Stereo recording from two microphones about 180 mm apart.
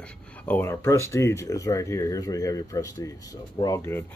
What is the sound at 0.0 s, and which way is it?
Speech, 10° left (ahead or behind).